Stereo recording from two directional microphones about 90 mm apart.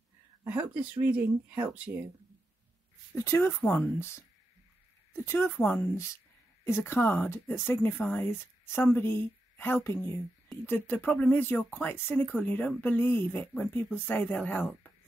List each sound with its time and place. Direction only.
0.5 s speech: 15° right (ahead or behind)
3.2 s speech: 30° left (ahead or behind)